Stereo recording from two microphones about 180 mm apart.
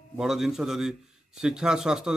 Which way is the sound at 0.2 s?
Centre (ahead or behind).